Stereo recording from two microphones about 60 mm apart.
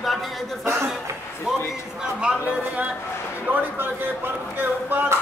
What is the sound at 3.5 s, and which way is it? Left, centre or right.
Speech, right.